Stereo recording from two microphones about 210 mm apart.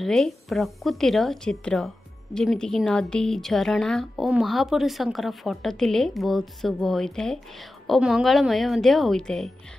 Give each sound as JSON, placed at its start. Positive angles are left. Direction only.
{"t": 0.0, "sound": "speech", "side_deg": 0}